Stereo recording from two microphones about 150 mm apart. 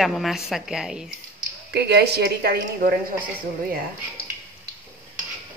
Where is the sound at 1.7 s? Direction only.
90° right.